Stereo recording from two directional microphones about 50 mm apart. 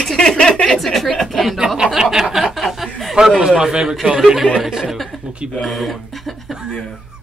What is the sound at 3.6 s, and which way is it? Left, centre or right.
A man's voice, centre.